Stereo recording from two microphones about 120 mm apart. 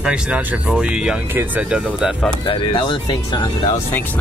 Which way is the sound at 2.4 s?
45° left (ahead or behind).